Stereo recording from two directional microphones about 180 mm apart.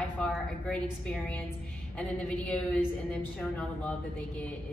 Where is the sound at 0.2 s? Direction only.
5° left (ahead or behind).